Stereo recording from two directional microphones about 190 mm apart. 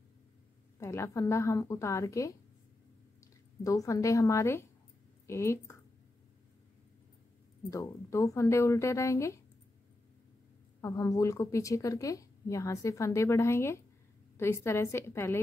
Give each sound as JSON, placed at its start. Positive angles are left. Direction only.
{"t": 0.7, "sound": "speech", "side_deg": 15}
{"t": 3.6, "sound": "speech", "side_deg": 15}
{"t": 7.7, "sound": "speech", "side_deg": 15}
{"t": 10.8, "sound": "speech", "side_deg": 15}